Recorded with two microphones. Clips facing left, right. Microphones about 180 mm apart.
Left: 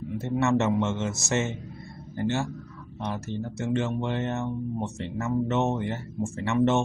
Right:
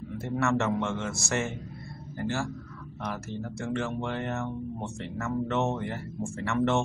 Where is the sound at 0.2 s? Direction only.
20° left (ahead or behind).